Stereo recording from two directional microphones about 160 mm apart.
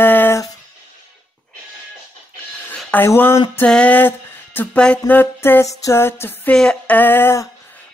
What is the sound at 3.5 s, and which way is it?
Music, 5° left (ahead or behind).